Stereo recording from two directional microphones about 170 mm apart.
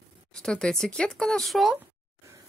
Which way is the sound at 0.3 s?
5° left (ahead or behind).